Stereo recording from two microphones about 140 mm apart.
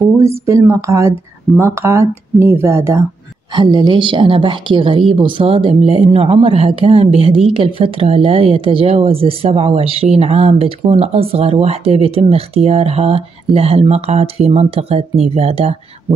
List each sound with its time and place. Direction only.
0.2 s speech: 20° right (ahead or behind)
3.5 s speech: 30° right (ahead or behind)